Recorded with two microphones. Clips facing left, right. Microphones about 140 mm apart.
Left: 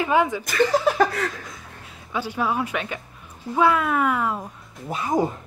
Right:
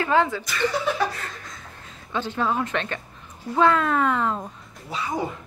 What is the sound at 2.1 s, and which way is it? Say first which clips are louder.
Speech: even; 10° left (ahead or behind).